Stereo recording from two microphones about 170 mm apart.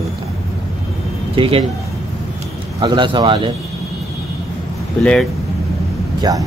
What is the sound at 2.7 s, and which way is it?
Speech, 25° right (ahead or behind).